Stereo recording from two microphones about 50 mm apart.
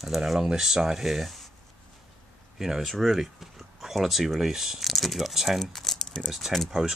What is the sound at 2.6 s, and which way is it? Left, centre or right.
Speech, centre.